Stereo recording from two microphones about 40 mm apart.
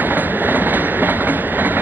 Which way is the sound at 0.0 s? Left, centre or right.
Right.